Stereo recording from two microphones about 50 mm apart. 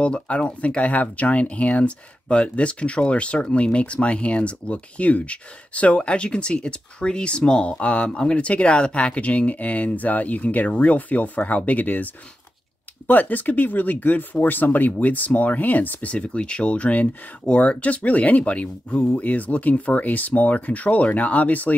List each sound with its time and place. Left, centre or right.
0.0 s speech: left